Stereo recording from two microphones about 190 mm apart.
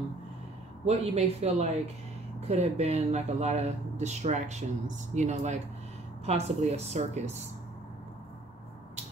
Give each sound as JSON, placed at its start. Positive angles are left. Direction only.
{"t": 0.8, "sound": "speech", "side_deg": -35}